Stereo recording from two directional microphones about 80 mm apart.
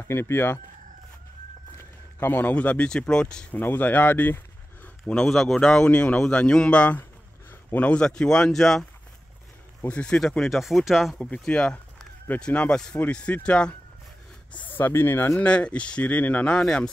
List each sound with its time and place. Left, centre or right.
0.1 s speech: left
1.8 s speech: left; by 3.4 s centre
3.5 s speech: left
5.0 s a man's voice: centre
9.8 s speech: centre
11.1 s a man's voice: centre; by 15.3 s left
15.4 s a man's voice: centre